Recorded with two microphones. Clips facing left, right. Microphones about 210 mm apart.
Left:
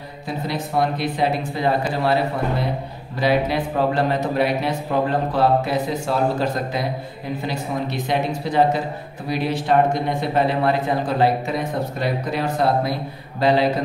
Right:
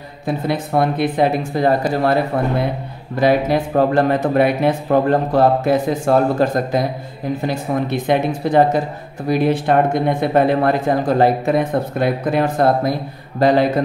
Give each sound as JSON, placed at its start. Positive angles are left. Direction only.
{"t": 0.5, "sound": "speech", "side_deg": -55}
{"t": 3.2, "sound": "speech", "side_deg": -45}